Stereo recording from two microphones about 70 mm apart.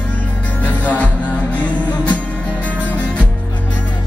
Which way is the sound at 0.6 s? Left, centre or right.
Left.